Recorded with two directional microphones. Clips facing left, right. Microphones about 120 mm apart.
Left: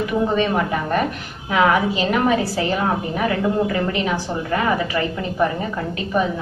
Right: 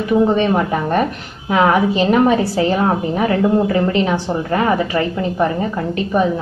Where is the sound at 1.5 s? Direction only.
30° right (ahead or behind).